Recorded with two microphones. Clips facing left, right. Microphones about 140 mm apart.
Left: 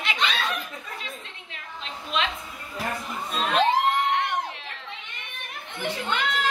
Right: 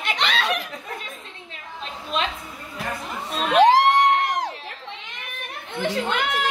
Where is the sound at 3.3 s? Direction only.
75° right (ahead or behind).